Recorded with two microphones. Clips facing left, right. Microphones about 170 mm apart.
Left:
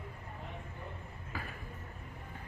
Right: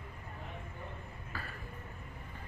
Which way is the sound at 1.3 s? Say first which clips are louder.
Left 2 dB; 15° left (ahead or behind).